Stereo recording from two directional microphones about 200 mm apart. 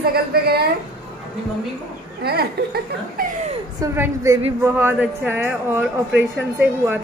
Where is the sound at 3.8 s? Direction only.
15° right (ahead or behind).